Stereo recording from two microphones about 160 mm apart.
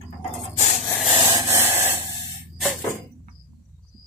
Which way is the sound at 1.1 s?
15° right (ahead or behind).